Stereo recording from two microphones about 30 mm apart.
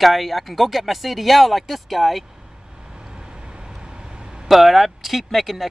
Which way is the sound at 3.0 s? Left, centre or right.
Right.